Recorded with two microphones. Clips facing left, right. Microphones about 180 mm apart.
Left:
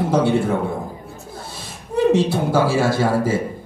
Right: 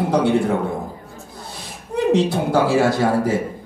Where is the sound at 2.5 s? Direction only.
20° right (ahead or behind).